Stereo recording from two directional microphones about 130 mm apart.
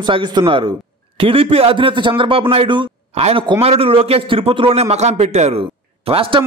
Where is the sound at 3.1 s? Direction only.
50° right (ahead or behind).